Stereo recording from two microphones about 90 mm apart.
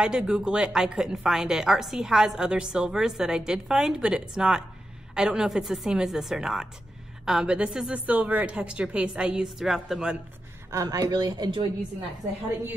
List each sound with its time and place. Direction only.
0.0 s a woman's voice: 10° right (ahead or behind)
10.7 s speech: 40° right (ahead or behind)